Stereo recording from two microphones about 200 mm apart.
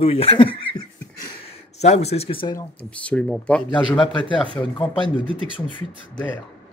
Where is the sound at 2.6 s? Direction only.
5° left (ahead or behind).